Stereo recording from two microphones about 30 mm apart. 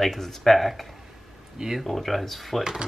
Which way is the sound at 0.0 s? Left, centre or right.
Centre.